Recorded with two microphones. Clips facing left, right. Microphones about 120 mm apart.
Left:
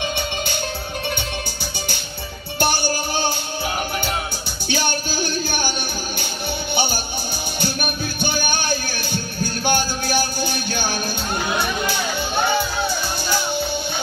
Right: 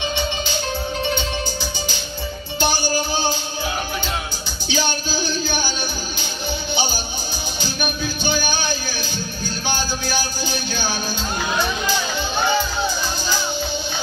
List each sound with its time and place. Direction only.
2.6 s music: 55° left (ahead or behind)
4.6 s music: 55° left (ahead or behind)
6.7 s music: 55° left (ahead or behind)